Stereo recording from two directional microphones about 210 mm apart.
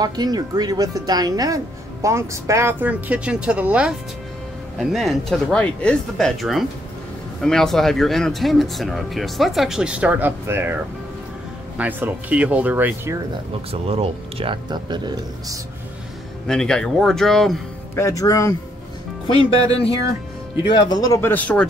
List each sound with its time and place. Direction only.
0.0 s speech: 20° right (ahead or behind)
11.7 s speech: 10° right (ahead or behind)
13.7 s speech: 30° right (ahead or behind)
16.4 s speech: 5° left (ahead or behind)
17.9 s speech: 15° left (ahead or behind)
19.2 s speech: 25° left (ahead or behind)
20.7 s speech: 20° left (ahead or behind)